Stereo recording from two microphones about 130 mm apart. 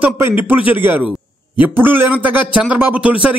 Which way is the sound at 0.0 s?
15° right (ahead or behind).